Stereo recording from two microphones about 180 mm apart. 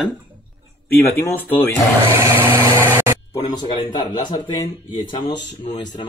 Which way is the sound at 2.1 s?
15° right (ahead or behind).